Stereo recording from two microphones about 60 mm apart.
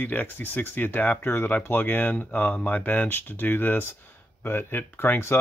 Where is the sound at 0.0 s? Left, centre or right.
Left.